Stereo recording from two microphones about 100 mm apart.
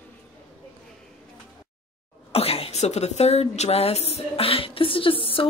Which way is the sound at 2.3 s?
75° left (ahead or behind).